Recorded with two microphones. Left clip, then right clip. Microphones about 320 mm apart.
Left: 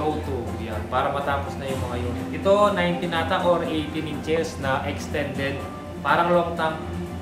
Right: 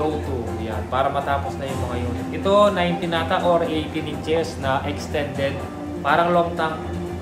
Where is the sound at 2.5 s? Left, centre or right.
Centre.